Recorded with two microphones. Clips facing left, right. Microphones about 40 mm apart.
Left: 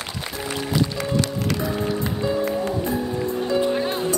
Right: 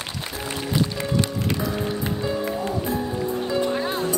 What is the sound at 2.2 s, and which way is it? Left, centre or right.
Music, centre.